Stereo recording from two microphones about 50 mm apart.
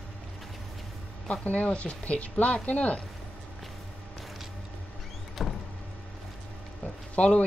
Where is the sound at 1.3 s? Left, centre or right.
Left.